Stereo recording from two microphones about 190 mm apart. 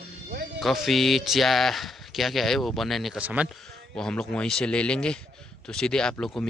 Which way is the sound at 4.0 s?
5° left (ahead or behind).